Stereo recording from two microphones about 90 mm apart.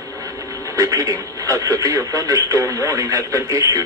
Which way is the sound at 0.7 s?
40° right (ahead or behind).